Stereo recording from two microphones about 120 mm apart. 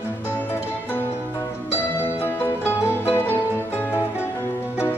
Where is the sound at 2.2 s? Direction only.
20° left (ahead or behind).